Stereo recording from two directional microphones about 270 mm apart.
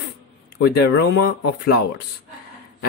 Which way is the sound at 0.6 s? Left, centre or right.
Left.